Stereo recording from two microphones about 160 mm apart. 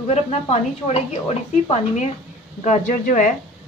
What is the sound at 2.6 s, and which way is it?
Speech, 55° left (ahead or behind).